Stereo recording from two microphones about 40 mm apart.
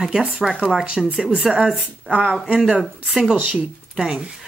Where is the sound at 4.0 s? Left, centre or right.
Right.